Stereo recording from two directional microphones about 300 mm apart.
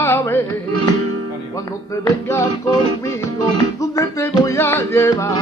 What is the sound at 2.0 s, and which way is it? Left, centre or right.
Music, centre.